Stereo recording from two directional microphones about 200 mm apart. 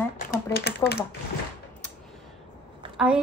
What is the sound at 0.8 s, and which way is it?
Speech, 15° left (ahead or behind).